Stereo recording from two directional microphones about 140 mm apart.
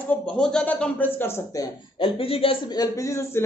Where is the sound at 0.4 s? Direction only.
5° left (ahead or behind).